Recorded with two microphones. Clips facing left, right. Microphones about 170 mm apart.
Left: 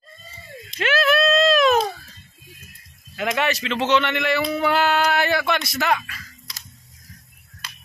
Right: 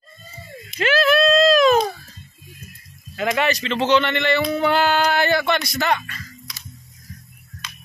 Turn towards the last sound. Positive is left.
turn(degrees=5)  # may be behind; listen again after turning